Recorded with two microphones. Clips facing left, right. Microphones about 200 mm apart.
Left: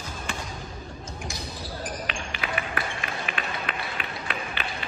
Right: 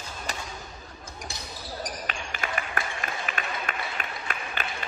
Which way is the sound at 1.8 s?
45° right (ahead or behind).